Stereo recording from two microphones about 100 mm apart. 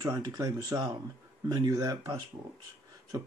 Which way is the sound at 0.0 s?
35° right (ahead or behind).